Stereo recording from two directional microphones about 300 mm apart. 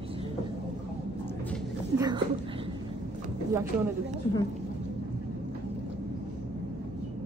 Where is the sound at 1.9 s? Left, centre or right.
Centre.